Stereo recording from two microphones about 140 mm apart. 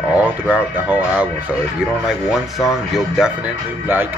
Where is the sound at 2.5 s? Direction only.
Centre (ahead or behind).